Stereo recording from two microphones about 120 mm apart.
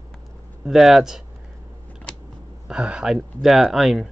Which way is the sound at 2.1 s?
5° left (ahead or behind).